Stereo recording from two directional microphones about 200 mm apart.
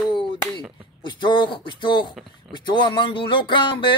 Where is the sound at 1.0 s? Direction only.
25° left (ahead or behind).